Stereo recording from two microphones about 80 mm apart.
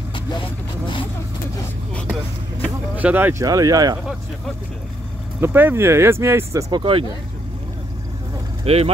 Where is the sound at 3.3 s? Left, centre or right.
Right.